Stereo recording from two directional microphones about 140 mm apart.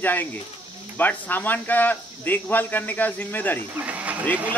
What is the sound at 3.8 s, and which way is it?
Speech, 10° right (ahead or behind).